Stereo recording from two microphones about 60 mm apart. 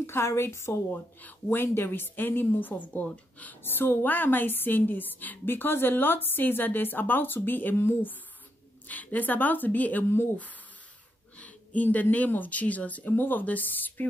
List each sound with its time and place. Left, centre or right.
0.0 s a woman's voice: left
0.9 s a woman's voice: left
3.6 s a woman's voice: left
8.8 s speech: left
11.3 s speech: left